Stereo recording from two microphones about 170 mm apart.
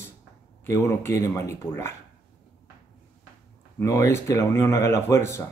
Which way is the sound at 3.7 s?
15° left (ahead or behind).